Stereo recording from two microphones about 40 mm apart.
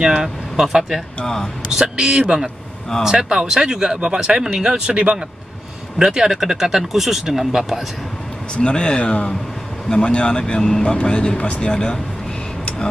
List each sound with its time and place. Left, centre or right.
0.0 s speech: centre
1.2 s speech: centre
1.7 s speech: centre
8.5 s speech: left
11.7 s speech: centre